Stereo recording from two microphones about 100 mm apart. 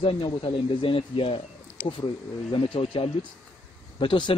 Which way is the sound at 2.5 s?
60° left (ahead or behind).